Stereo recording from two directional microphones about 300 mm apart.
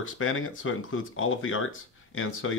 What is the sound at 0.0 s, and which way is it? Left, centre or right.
Speech, left.